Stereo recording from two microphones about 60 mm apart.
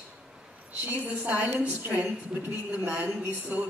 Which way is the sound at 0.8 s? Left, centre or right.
Right.